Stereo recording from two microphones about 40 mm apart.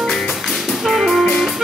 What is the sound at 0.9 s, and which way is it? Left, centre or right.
Music, centre.